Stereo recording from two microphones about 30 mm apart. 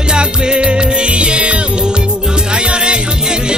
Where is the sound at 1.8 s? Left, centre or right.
Right.